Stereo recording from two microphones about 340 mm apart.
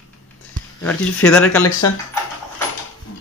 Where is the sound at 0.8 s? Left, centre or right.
Centre.